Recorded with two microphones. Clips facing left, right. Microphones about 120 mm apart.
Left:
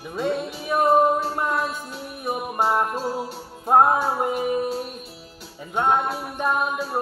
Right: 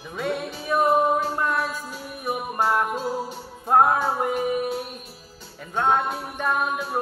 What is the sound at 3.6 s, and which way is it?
Music, 15° left (ahead or behind).